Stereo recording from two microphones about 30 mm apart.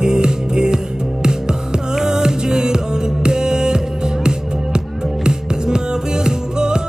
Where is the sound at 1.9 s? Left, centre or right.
Centre.